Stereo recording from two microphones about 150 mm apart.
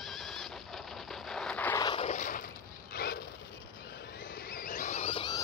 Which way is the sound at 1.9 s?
50° left (ahead or behind).